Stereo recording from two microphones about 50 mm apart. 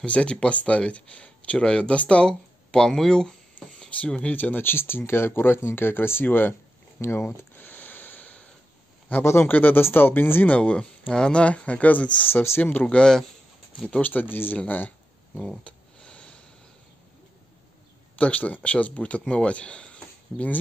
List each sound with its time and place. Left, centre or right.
0.0 s speech: left
4.3 s speech: left
7.0 s speech: left
7.6 s vehicle: left
9.2 s speech: left
9.5 s speech: left
10.5 s speech: left
12.4 s speech: left
12.8 s speech: centre
14.3 s speech: left
15.7 s a sound: left
18.1 s speech: left